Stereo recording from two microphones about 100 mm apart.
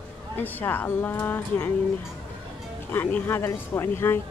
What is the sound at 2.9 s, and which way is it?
Speech, 20° left (ahead or behind).